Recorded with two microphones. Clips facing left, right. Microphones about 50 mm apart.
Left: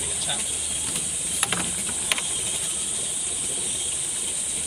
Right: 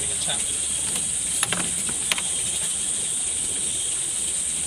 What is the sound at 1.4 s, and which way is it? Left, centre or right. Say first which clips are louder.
Cricket: even; centre.